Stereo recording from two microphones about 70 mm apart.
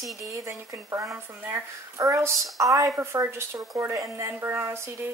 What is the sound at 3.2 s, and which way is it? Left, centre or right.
A woman's voice, right.